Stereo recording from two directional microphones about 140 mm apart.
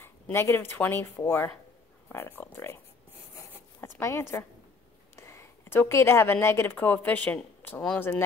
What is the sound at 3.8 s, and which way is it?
A woman's voice, 20° left (ahead or behind).